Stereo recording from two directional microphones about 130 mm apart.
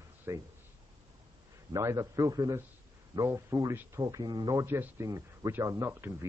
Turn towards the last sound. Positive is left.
turn(degrees=-20)  # may be behind; listen again after turning